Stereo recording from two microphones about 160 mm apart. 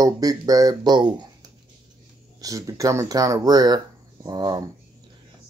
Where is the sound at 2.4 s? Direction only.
20° right (ahead or behind).